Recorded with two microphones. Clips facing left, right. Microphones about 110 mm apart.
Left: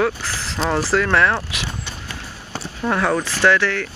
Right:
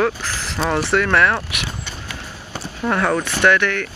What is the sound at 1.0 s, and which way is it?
Speech, 15° left (ahead or behind).